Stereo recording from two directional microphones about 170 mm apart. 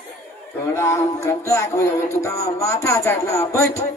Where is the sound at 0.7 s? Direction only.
15° left (ahead or behind).